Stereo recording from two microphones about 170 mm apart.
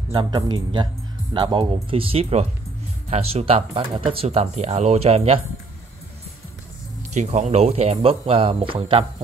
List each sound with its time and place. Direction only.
0.1 s speech: 25° right (ahead or behind)
7.2 s speech: 45° right (ahead or behind)